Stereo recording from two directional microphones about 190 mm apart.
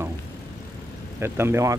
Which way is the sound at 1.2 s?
15° right (ahead or behind).